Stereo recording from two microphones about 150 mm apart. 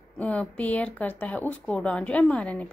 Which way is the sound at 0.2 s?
10° left (ahead or behind).